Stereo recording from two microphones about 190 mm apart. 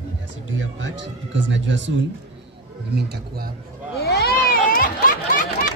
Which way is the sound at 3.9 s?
55° left (ahead or behind).